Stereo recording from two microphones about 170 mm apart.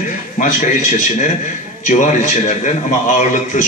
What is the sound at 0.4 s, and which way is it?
A man's voice, 50° left (ahead or behind).